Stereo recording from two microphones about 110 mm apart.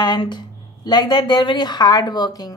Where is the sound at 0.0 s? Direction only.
40° left (ahead or behind).